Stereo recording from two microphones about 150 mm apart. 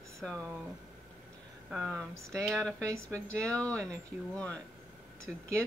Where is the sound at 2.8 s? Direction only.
20° right (ahead or behind).